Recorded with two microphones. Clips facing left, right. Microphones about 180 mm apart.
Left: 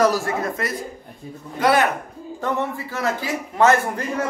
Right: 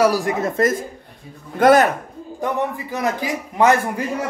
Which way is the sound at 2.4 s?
15° right (ahead or behind).